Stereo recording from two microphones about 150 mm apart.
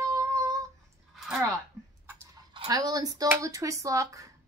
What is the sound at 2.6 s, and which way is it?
Speech, 25° right (ahead or behind).